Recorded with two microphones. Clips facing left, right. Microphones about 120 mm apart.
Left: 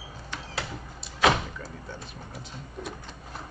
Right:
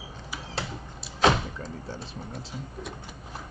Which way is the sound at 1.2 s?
30° right (ahead or behind).